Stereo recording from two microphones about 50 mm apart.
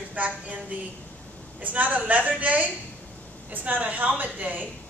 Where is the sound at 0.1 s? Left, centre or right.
Right.